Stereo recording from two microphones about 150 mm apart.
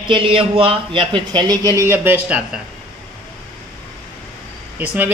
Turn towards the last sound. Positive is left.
turn(degrees=-10)  # may be behind; listen again after turning